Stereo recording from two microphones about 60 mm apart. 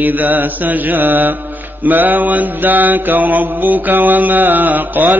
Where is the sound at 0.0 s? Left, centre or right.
Right.